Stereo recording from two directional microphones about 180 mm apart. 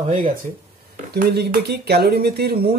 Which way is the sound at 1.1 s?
65° right (ahead or behind).